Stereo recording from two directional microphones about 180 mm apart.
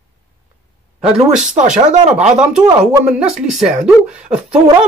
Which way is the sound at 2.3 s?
5° right (ahead or behind).